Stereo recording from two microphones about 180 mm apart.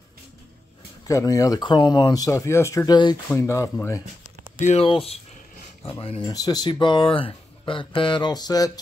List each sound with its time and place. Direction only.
1.0 s speech: 20° left (ahead or behind)
4.2 s speech: 40° left (ahead or behind); by 8.7 s 20° left (ahead or behind)